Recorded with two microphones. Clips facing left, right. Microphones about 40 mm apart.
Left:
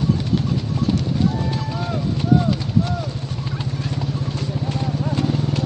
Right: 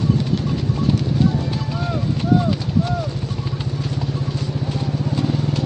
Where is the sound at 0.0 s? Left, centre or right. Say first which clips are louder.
Even; centre.